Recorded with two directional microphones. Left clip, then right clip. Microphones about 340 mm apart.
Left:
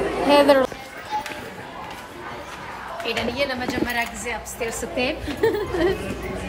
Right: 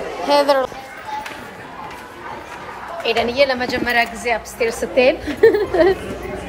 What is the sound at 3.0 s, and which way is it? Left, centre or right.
A woman's voice, centre.